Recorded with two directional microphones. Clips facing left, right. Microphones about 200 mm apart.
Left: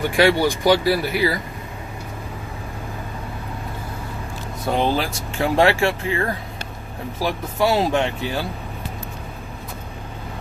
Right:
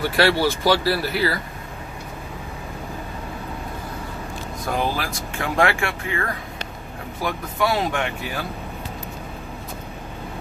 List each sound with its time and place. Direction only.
0.0 s speech: 15° left (ahead or behind)
4.6 s speech: 25° left (ahead or behind)